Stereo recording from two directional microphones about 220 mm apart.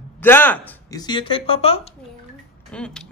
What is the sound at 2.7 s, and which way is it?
Speech, 5° left (ahead or behind).